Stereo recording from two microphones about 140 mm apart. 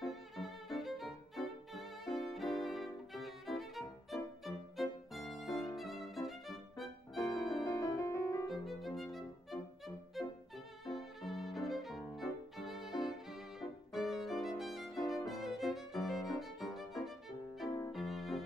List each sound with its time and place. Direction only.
0.0 s music: centre (ahead or behind)
2.3 s violin: centre (ahead or behind)
7.6 s music: 25° left (ahead or behind)
8.5 s violin: centre (ahead or behind)
17.6 s violin: 25° left (ahead or behind)
17.9 s music: centre (ahead or behind)